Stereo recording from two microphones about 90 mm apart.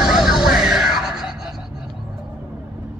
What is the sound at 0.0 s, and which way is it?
Music, 5° right (ahead or behind).